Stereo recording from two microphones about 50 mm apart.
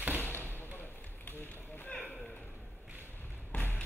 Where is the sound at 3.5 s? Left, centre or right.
Left.